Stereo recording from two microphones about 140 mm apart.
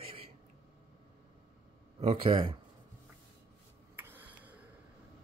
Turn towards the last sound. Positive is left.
turn(degrees=-10)  # may be behind; listen again after turning